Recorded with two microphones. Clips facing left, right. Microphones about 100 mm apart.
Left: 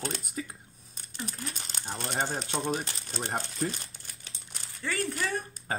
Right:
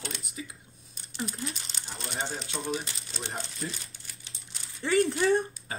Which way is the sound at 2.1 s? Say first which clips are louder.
Left 3 dB; 40° left (ahead or behind).